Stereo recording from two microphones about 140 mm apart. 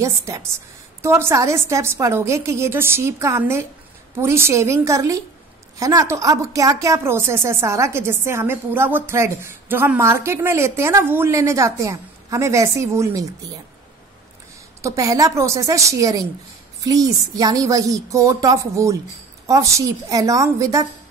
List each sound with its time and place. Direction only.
0.0 s a woman's voice: 20° right (ahead or behind)
14.8 s a woman's voice: 25° right (ahead or behind)